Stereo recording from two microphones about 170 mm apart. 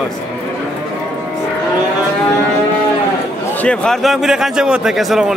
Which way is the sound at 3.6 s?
5° left (ahead or behind).